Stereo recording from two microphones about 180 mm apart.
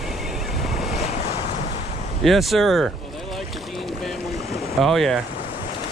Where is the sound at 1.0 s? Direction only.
35° left (ahead or behind).